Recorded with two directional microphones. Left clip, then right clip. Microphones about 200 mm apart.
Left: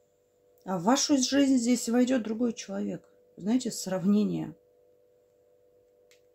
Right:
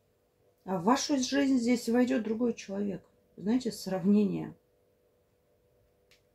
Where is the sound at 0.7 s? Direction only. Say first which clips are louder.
Left 2 dB; 55° left (ahead or behind).